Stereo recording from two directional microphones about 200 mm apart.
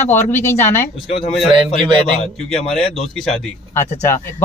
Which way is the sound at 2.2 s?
30° left (ahead or behind).